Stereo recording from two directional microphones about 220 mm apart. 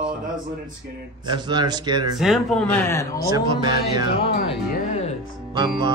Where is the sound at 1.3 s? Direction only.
20° right (ahead or behind).